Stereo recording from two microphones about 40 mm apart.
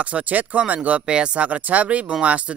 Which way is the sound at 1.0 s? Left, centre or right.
Right.